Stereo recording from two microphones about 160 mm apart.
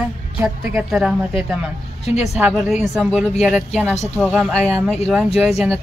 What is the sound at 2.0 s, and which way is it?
Speech, 45° left (ahead or behind).